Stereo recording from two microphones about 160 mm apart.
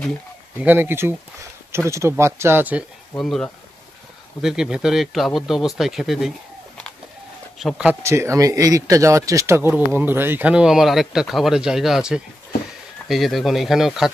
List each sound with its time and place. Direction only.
0.6 s speech: 15° right (ahead or behind)
3.2 s speech: 5° left (ahead or behind)
7.5 s speech: centre (ahead or behind)
8.0 s speech: 20° right (ahead or behind); by 14.1 s centre (ahead or behind)